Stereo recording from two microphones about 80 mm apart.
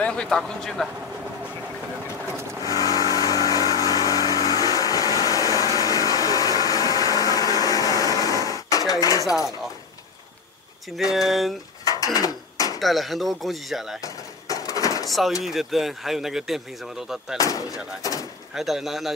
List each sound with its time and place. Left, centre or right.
0.0 s speech: centre
2.6 s vehicle: left
5.3 s a sound: left
11.0 s speech: centre
11.8 s a sound: left
12.7 s speech: centre
14.0 s a sound: left
15.0 s speech: centre
17.4 s speech: left
18.5 s speech: centre